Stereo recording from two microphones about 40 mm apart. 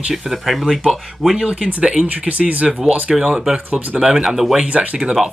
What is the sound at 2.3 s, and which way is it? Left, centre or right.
Speech, right.